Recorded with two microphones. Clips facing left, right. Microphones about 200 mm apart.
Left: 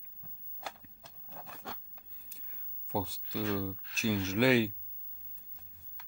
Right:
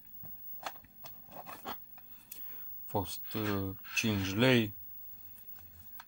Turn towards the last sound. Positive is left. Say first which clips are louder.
# left 1 dB
turn(degrees=5)  # may be behind; listen again after turning